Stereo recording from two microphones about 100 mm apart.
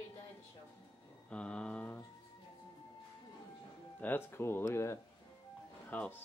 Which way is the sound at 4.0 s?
20° left (ahead or behind).